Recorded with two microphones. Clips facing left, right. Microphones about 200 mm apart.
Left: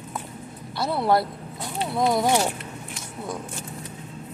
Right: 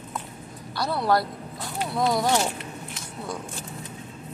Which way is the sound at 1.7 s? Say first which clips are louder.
Left 2 dB; 20° left (ahead or behind).